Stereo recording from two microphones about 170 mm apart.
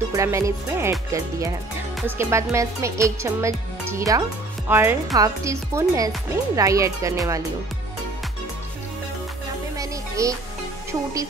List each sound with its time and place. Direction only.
0.1 s speech: 20° right (ahead or behind)
9.8 s music: 20° right (ahead or behind)